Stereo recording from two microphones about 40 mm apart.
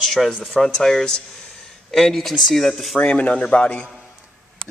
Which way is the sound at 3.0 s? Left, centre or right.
Left.